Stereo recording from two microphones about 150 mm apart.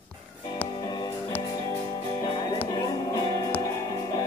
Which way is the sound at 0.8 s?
30° left (ahead or behind).